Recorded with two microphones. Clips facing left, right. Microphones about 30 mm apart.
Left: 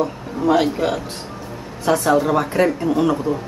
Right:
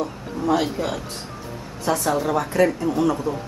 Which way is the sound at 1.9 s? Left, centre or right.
Left.